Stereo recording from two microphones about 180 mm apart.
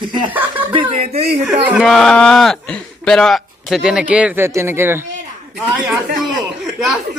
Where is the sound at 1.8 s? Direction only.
Centre (ahead or behind).